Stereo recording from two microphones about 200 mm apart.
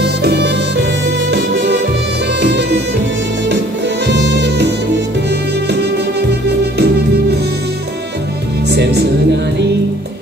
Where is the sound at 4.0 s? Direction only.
60° right (ahead or behind).